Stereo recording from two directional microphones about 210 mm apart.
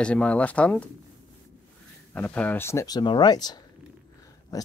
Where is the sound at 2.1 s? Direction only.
10° left (ahead or behind).